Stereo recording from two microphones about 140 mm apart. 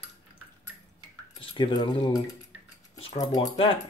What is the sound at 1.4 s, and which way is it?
Speech, 35° left (ahead or behind).